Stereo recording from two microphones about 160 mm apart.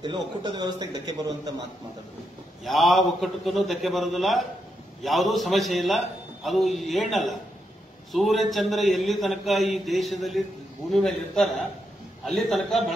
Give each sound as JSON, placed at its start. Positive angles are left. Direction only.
{"t": 0.4, "sound": "a man's voice", "side_deg": -25}
{"t": 2.6, "sound": "a man's voice", "side_deg": 0}